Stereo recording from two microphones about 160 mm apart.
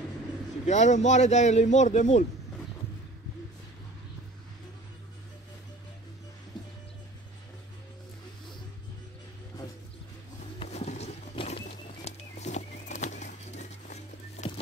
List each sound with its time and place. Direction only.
0.7 s a man's voice: 45° left (ahead or behind)
10.6 s a sound: 40° left (ahead or behind)
11.6 s music: 45° left (ahead or behind)